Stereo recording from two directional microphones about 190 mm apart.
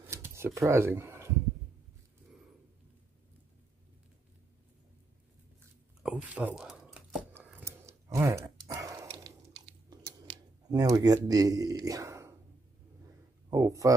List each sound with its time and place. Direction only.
0.0 s a sound: 10° right (ahead or behind)
0.6 s speech: 15° right (ahead or behind)
6.0 s a sound: 5° right (ahead or behind)
9.1 s chewing: 25° right (ahead or behind)
11.8 s speech: 15° right (ahead or behind)
13.5 s speech: 20° right (ahead or behind)